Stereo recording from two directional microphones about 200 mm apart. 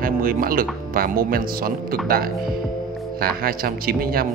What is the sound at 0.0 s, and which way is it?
Speech, 45° right (ahead or behind).